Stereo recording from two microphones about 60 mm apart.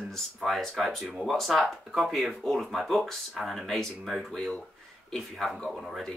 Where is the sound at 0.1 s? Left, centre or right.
Centre.